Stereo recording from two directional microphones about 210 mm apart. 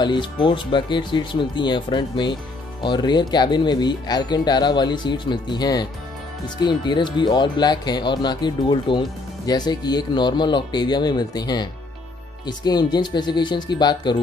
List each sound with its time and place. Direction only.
0.0 s speech: 20° left (ahead or behind)